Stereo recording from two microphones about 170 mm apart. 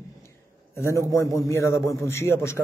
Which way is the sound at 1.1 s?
20° left (ahead or behind).